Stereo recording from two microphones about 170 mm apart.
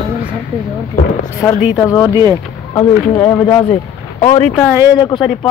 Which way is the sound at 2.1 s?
20° right (ahead or behind).